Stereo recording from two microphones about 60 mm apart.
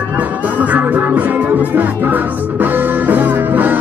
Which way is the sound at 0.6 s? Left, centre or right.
Right.